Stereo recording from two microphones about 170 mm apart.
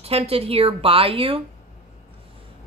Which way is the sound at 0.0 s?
35° right (ahead or behind).